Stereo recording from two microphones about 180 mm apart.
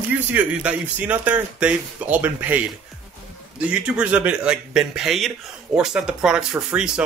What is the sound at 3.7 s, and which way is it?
A man's voice, 5° right (ahead or behind).